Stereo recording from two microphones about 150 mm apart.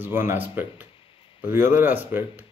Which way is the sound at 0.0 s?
15° right (ahead or behind).